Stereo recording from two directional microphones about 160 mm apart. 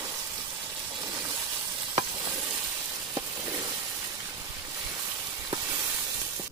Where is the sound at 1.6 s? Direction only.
15° right (ahead or behind).